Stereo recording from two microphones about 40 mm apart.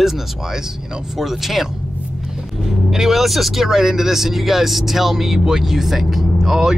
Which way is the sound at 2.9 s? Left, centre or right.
Centre.